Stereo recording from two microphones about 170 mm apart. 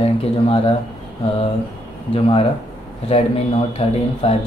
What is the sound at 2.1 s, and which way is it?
Speech, 30° left (ahead or behind).